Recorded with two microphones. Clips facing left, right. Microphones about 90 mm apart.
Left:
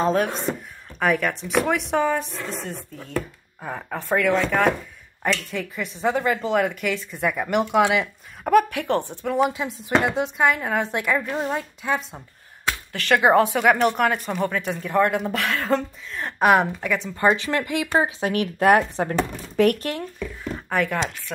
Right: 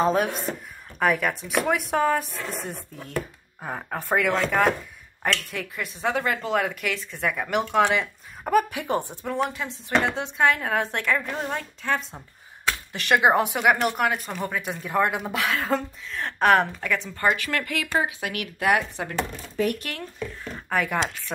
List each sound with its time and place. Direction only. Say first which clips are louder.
0.0 s speech: left 1 dB; 5° right (ahead or behind)
8.7 s speech: left 3 dB; 10° right (ahead or behind)
9.8 s speech: left 3 dB; 10° left (ahead or behind)
12.9 s speech: left 3 dB; 15° right (ahead or behind); by 17.1 s 5° left (ahead or behind)
17.3 s speech: left 3 dB; 25° left (ahead or behind)
18.0 s speech: left 6 dB; 35° left (ahead or behind)
19.5 s speech: left 7 dB; 65° left (ahead or behind)
20.5 s a sound: left 2 dB; centre (ahead or behind)